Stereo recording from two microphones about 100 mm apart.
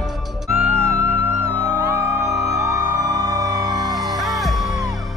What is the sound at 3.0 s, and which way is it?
Music, 35° right (ahead or behind).